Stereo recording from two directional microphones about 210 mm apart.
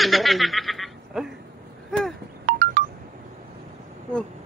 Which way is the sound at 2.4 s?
35° right (ahead or behind).